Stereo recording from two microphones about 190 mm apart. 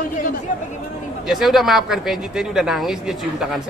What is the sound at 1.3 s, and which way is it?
Speech, centre (ahead or behind).